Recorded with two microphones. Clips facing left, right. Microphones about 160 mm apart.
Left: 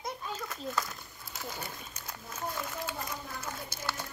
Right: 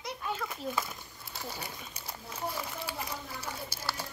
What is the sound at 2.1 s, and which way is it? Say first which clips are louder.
Speech: right 1 dB; 10° right (ahead or behind).